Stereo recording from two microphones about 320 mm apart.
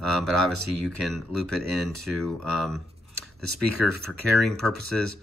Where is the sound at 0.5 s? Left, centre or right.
Right.